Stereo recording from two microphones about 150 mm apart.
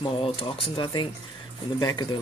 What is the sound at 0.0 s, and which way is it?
Speech, 35° left (ahead or behind).